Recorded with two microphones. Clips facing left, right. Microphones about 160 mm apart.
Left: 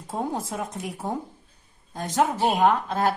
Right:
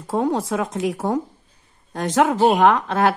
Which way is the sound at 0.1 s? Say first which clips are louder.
Right 8 dB; 85° right.